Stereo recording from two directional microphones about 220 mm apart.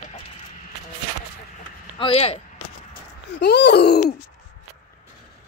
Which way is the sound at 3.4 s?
50° left (ahead or behind).